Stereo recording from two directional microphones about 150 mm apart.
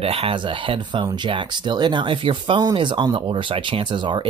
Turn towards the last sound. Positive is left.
turn(degrees=-30)  # may be behind; listen again after turning